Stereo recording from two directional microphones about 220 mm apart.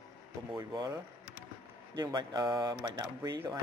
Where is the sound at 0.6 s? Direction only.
15° right (ahead or behind).